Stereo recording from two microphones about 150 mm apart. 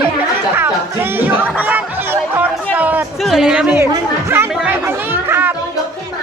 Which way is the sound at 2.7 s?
10° right (ahead or behind).